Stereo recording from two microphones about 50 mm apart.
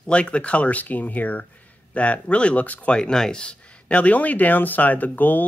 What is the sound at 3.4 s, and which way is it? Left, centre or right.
Speech, left.